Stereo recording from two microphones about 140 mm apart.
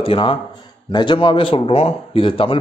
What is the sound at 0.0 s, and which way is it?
A man's voice, 40° left (ahead or behind).